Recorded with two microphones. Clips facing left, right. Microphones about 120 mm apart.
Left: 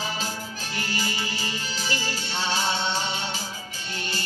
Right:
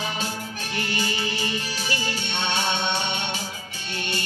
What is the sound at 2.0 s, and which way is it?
Music, 35° left (ahead or behind).